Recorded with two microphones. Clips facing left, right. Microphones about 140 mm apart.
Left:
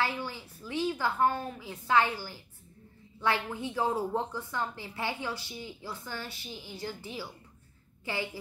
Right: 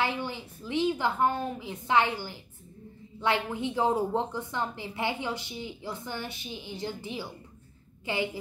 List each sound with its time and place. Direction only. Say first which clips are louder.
0.0 s a woman's voice: right 2 dB; 20° right (ahead or behind)